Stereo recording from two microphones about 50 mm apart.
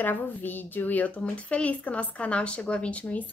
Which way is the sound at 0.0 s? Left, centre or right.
Left.